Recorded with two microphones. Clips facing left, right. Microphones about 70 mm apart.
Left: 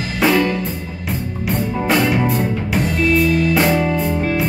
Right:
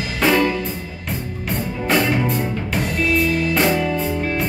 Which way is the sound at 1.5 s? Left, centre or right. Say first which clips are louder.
Left 3 dB; centre.